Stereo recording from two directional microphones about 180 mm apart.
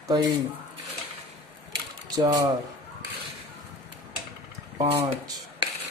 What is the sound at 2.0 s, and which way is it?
Mechanisms, 20° right (ahead or behind).